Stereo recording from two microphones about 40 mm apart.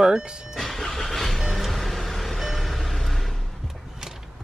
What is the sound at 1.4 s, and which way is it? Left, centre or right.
Music, centre.